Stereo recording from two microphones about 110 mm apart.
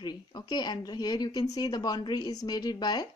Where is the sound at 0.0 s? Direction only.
40° left (ahead or behind).